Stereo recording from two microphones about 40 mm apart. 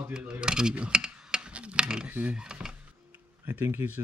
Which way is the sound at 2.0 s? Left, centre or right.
Right.